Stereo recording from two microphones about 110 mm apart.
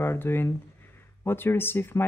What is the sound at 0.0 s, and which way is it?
Speech, 20° left (ahead or behind).